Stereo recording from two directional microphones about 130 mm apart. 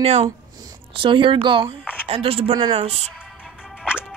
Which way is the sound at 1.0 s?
40° right (ahead or behind).